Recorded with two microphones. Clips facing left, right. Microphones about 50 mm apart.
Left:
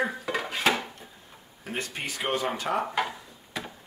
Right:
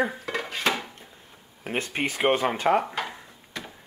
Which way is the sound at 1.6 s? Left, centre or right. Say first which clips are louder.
Right 5 dB; right.